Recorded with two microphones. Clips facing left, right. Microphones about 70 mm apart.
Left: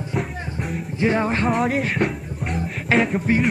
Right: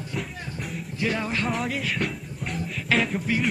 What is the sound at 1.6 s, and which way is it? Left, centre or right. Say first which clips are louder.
Speech: left 7 dB; left.